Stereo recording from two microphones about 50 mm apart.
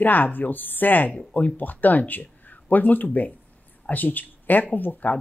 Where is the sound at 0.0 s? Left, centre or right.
Left.